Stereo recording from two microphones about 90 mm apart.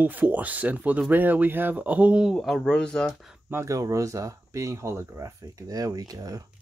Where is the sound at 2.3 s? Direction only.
Centre (ahead or behind).